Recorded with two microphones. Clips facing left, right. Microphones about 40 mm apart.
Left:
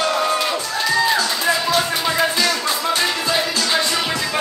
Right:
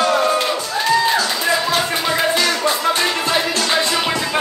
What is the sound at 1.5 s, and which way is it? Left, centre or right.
Music, centre.